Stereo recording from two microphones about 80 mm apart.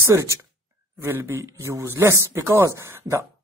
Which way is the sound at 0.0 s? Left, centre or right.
Right.